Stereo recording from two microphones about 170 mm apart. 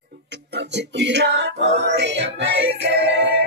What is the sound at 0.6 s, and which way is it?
Music, 90° right.